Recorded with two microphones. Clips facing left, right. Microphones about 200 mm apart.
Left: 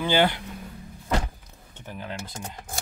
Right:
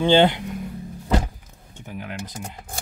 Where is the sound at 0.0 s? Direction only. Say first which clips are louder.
Right 6 dB; 25° right (ahead or behind).